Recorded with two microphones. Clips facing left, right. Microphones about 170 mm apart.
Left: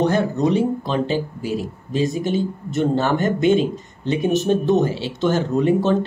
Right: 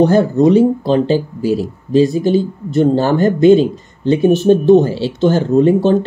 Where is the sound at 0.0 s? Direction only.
35° right (ahead or behind).